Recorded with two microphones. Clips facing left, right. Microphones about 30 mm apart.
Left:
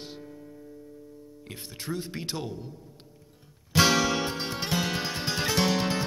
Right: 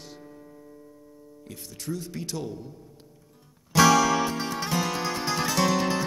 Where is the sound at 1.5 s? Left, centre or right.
Left.